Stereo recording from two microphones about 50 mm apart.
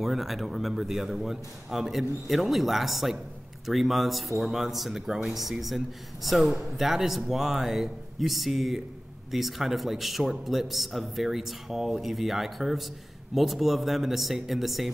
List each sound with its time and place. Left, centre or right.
0.0 s a man's voice: centre